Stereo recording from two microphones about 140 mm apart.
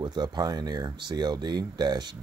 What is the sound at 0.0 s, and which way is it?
Speech, 30° right (ahead or behind).